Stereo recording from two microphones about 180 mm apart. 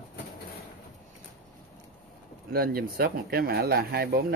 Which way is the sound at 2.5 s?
55° right (ahead or behind).